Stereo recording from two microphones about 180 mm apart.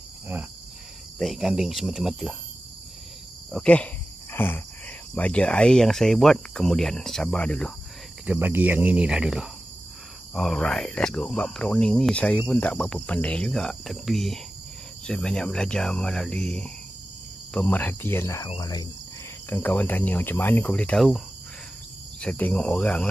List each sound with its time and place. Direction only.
1.1 s speech: centre (ahead or behind)
3.5 s speech: 5° left (ahead or behind)
8.3 s speech: 10° right (ahead or behind); by 18.9 s 20° left (ahead or behind)
19.5 s speech: 10° left (ahead or behind)
22.2 s speech: 10° left (ahead or behind)